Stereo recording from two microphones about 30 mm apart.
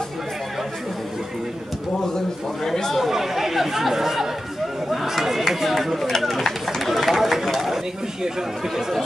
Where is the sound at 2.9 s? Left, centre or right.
Centre.